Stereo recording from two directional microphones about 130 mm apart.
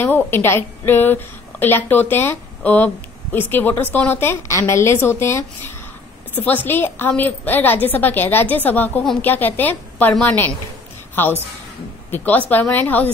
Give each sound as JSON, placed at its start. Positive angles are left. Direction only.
{"t": 0.0, "sound": "a woman's voice", "side_deg": 15}
{"t": 12.1, "sound": "a woman's voice", "side_deg": 15}